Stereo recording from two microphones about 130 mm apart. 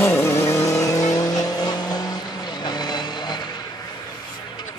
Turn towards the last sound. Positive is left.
turn(degrees=35)  # may be behind; listen again after turning